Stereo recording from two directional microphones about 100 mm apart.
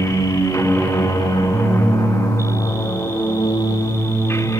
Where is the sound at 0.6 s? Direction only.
25° left (ahead or behind).